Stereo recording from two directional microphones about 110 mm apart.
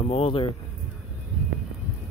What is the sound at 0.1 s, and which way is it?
Speech, 55° left (ahead or behind).